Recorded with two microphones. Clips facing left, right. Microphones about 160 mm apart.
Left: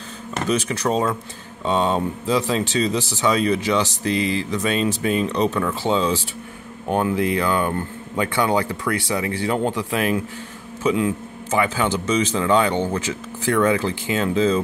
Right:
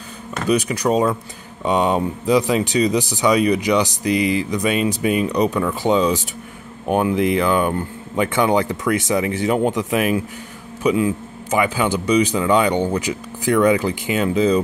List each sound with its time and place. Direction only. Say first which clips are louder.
0.5 s speech: right 4 dB; 10° right (ahead or behind)